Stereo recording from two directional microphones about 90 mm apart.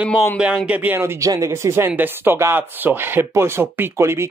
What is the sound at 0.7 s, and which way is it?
Speech, 20° right (ahead or behind).